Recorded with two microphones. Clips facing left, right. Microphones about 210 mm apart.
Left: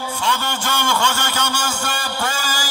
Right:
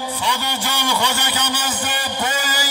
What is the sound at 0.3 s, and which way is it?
A man's voice, 15° right (ahead or behind).